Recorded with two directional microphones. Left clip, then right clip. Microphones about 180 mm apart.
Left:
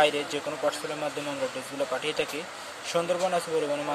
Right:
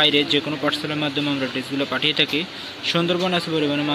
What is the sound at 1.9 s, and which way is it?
Speech, 5° left (ahead or behind).